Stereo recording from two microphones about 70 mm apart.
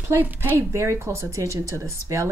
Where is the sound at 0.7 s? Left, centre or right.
Right.